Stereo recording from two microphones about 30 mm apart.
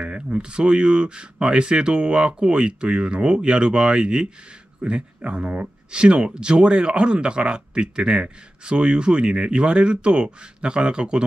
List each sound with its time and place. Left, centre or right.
0.0 s speech: right